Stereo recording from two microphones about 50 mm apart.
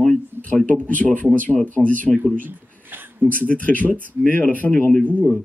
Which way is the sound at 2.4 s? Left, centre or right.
Right.